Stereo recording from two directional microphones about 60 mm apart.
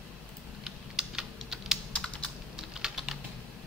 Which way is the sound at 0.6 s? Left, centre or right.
Centre.